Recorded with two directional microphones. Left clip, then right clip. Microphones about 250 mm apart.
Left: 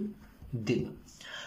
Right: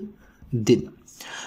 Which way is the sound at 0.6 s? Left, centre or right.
Right.